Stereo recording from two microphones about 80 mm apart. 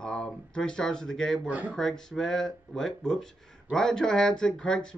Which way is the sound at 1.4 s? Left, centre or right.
Centre.